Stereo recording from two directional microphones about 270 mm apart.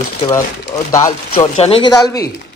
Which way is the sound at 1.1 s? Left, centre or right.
Left.